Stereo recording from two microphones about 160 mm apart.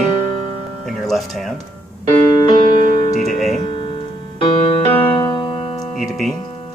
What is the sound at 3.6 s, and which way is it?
Music, 30° left (ahead or behind).